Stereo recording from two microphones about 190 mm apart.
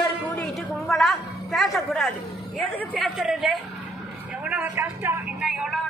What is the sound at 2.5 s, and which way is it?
Speech, centre (ahead or behind).